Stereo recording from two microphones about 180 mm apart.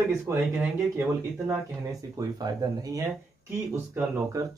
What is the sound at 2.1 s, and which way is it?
Speech, 20° right (ahead or behind).